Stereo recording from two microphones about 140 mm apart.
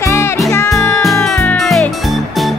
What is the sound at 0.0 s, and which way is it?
Music, 20° left (ahead or behind).